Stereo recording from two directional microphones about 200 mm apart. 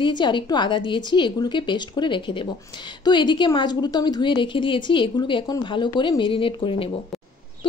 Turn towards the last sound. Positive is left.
turn(degrees=25)  # may be behind; listen again after turning